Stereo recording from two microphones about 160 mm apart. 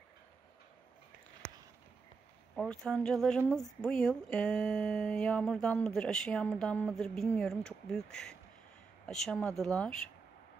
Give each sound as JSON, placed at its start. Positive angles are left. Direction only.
{"t": 2.5, "sound": "speech", "side_deg": 5}